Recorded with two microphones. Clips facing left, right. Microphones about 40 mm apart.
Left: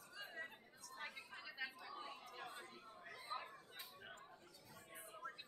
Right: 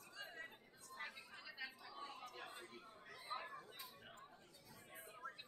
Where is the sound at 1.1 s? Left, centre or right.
Centre.